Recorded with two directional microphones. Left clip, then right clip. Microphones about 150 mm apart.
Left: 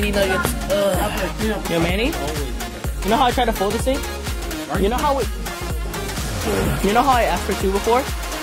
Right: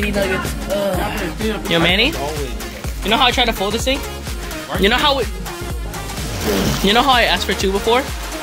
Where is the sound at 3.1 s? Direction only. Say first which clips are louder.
Right 3 dB; 30° left (ahead or behind).